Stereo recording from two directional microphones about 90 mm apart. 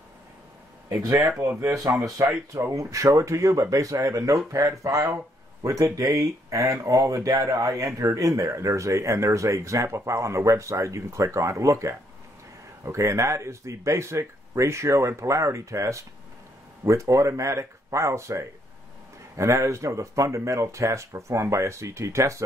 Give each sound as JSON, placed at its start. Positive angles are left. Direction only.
{"t": 1.0, "sound": "speech", "side_deg": -35}